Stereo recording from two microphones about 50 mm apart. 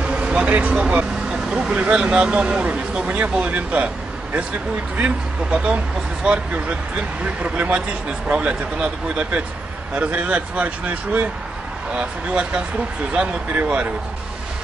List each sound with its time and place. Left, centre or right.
0.0 s a sound: right
0.5 s speech: right
11.9 s speech: right